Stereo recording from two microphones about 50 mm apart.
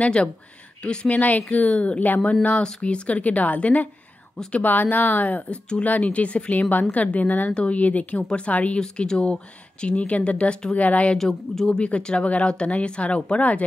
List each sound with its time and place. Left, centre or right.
0.0 s speech: left
6.0 s speech: left
8.7 s speech: centre
11.1 s speech: centre; by 13.7 s left